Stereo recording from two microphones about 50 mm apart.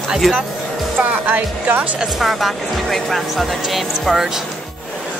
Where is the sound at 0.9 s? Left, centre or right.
Right.